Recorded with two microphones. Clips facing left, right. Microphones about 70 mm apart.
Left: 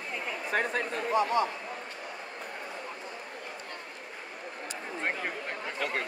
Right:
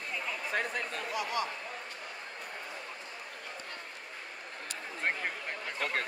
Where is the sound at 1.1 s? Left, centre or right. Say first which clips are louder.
Left 9 dB; left.